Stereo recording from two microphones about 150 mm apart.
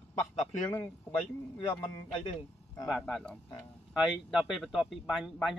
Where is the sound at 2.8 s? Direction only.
Centre (ahead or behind).